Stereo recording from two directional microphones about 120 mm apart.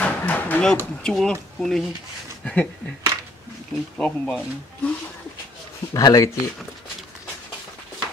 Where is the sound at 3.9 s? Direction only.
Centre (ahead or behind).